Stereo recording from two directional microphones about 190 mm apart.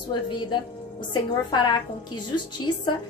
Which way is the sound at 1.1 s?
25° left (ahead or behind).